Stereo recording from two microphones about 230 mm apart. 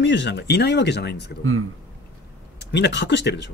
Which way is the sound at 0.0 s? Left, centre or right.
Left.